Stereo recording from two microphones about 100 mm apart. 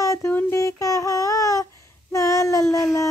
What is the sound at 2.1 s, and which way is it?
Child singing, 35° left (ahead or behind).